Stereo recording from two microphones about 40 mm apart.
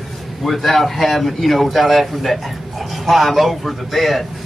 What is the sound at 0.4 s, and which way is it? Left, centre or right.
Speech, centre.